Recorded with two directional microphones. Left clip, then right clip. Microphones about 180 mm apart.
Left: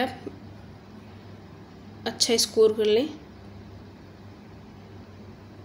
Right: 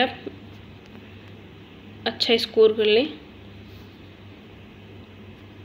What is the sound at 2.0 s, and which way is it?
A woman's voice, 15° left (ahead or behind).